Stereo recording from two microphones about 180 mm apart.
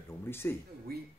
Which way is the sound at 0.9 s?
55° right (ahead or behind).